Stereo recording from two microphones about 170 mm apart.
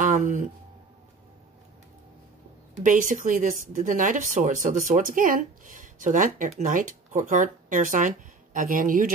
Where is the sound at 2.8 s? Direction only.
50° right (ahead or behind).